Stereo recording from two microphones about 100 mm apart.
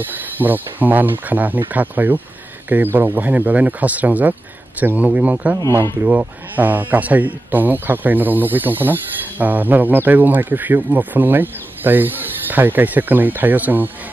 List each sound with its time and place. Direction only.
0.0 s speech: 20° right (ahead or behind)